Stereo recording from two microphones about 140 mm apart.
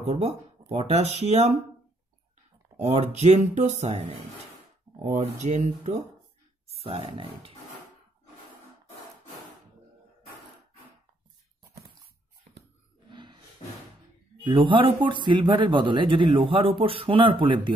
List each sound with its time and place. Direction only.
0.0 s speech: 45° right (ahead or behind)
2.8 s speech: 50° right (ahead or behind)
5.0 s speech: 55° right (ahead or behind)
6.7 s speech: 45° right (ahead or behind)
13.1 s roar: 35° right (ahead or behind)
14.4 s speech: 35° right (ahead or behind)